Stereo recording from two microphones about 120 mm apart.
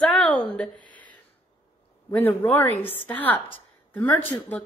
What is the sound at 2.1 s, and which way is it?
A woman's voice, 15° left (ahead or behind).